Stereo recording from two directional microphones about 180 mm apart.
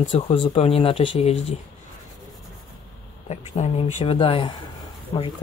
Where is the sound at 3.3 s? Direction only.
40° left (ahead or behind).